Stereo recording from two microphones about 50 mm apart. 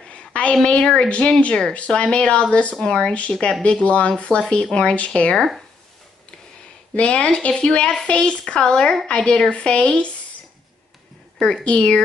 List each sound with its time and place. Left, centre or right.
0.1 s a sound: left
0.7 s speech: left
2.7 s speech: centre
3.0 s speech: left
7.0 s speech: left
11.6 s speech: left